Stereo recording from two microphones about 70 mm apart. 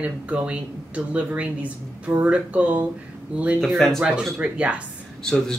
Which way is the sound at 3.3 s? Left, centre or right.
Centre.